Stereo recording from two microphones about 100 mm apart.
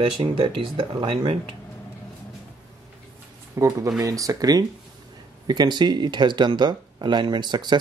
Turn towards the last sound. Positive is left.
turn(degrees=-45)  # may be behind; listen again after turning